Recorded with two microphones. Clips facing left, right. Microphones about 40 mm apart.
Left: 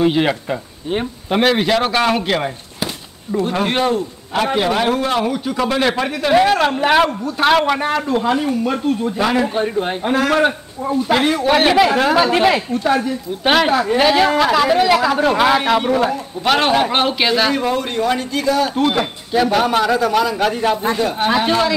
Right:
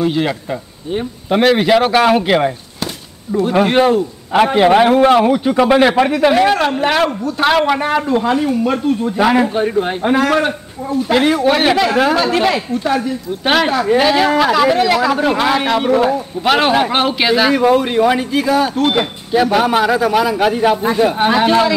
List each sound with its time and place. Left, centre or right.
0.0 s speech: centre
1.3 s a man's voice: centre
4.6 s a man's voice: right
6.3 s a man's voice: centre; by 19.0 s right
19.3 s a man's voice: centre